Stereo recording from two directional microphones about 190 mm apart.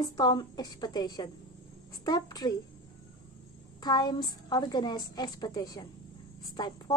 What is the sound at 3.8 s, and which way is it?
A woman's voice, 20° left (ahead or behind).